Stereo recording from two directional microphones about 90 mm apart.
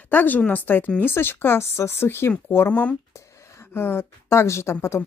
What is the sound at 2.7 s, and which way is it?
Speech, 15° left (ahead or behind).